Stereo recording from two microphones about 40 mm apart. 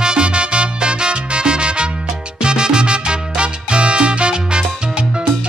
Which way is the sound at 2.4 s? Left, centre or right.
Right.